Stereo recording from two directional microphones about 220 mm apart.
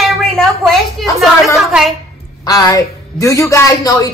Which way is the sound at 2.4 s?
15° left (ahead or behind).